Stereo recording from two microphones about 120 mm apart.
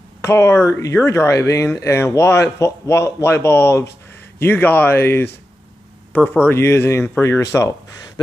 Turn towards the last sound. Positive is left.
turn(degrees=25)  # may be behind; listen again after turning